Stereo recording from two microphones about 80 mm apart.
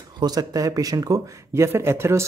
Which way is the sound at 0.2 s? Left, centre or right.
Right.